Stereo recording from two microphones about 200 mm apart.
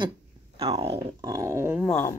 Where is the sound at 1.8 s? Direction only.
10° left (ahead or behind).